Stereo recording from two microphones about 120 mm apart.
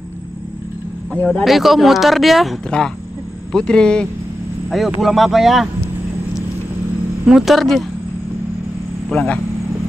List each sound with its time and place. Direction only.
1.1 s speech: 10° left (ahead or behind)
1.4 s a woman's voice: centre (ahead or behind)
7.2 s a woman's voice: 5° right (ahead or behind)
9.1 s speech: 10° left (ahead or behind)